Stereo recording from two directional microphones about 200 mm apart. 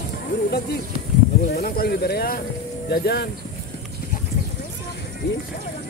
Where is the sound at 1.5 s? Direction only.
50° left (ahead or behind).